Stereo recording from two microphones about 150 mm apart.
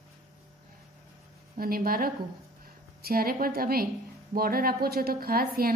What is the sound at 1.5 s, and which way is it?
A woman's voice, 80° right.